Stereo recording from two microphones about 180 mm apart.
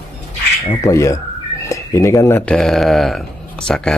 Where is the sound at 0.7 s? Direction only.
15° left (ahead or behind).